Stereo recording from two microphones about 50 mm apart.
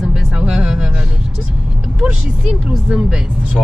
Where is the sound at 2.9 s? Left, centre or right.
Centre.